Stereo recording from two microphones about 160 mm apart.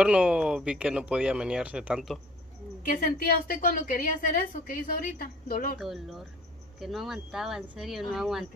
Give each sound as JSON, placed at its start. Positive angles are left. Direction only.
{"t": 0.0, "sound": "speech", "side_deg": -5}
{"t": 2.8, "sound": "a woman's voice", "side_deg": 60}
{"t": 5.8, "sound": "speech", "side_deg": 0}